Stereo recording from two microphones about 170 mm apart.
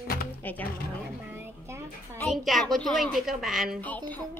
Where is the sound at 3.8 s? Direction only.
10° left (ahead or behind).